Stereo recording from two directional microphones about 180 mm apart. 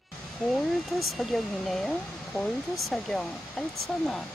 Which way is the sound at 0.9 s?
Centre (ahead or behind).